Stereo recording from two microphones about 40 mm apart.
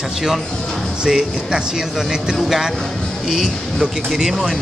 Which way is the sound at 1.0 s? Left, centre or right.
Centre.